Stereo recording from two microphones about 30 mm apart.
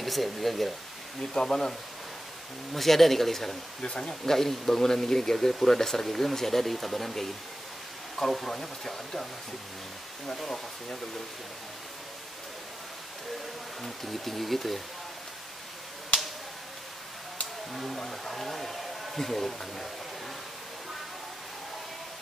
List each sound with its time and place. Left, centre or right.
0.0 s speech: centre
1.3 s speech: left
2.7 s speech: centre
3.8 s speech: left
4.1 s speech: centre
8.5 s speech: centre
10.3 s speech: centre
13.8 s speech: centre
17.9 s speech: centre